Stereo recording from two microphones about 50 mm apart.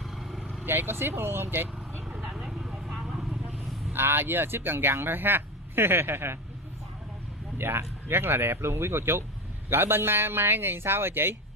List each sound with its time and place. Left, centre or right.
0.0 s vehicle: centre
0.7 s speech: right
2.3 s vehicle: centre
3.9 s speech: right
7.5 s speech: right